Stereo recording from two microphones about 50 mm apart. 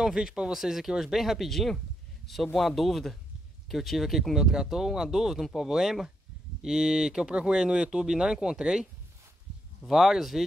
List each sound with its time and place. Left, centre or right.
0.0 s a man's voice: centre
9.8 s speech: centre